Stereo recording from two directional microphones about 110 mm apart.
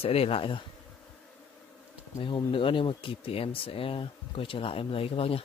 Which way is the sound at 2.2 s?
50° left (ahead or behind).